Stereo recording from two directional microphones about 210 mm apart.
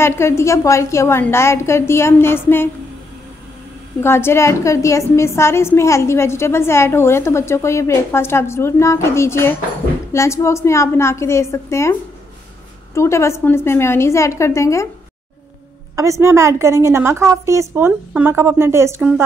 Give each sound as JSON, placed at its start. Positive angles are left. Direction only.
{"t": 0.0, "sound": "a woman's voice", "side_deg": 10}
{"t": 4.0, "sound": "a woman's voice", "side_deg": 10}
{"t": 16.0, "sound": "a woman's voice", "side_deg": -15}